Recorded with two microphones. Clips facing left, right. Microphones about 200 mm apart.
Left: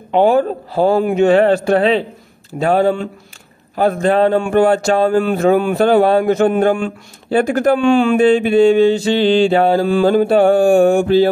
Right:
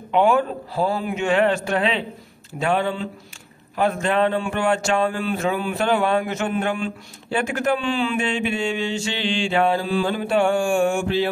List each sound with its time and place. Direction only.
0.1 s a man's voice: 35° left (ahead or behind)
0.7 s a man's voice: 55° left (ahead or behind)
1.1 s a man's voice: 35° left (ahead or behind)